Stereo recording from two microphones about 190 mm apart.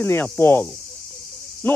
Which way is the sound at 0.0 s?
10° left (ahead or behind).